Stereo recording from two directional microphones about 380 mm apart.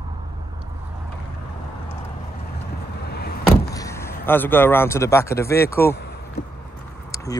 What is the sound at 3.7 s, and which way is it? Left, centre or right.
Speech, centre.